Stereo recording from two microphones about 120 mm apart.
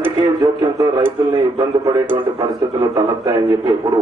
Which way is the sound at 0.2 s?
30° right (ahead or behind).